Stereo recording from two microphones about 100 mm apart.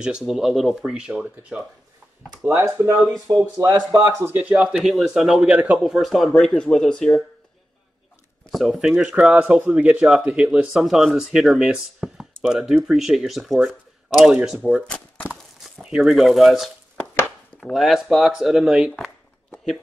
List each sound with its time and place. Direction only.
0.2 s speech: centre (ahead or behind)
2.5 s speech: 35° right (ahead or behind)
4.1 s speech: 20° right (ahead or behind)
4.6 s speech: 5° right (ahead or behind)
8.5 s speech: centre (ahead or behind)
15.8 s speech: 5° right (ahead or behind)